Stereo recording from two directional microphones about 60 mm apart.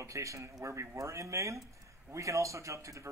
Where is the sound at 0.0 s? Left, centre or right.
Right.